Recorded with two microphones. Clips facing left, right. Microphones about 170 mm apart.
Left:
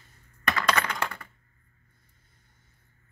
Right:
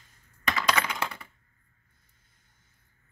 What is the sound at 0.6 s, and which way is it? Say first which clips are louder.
Computer keyboard: left 1 dB; 10° right (ahead or behind).